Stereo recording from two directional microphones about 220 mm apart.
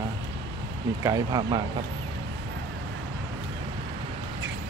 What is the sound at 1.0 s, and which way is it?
Speech, 15° right (ahead or behind).